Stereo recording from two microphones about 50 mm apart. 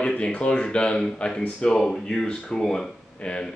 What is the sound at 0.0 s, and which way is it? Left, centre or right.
Speech, left.